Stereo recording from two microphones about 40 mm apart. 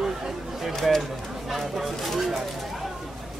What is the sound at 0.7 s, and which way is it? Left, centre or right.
Speech, centre.